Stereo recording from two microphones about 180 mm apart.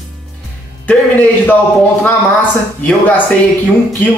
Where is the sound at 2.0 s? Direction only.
10° left (ahead or behind).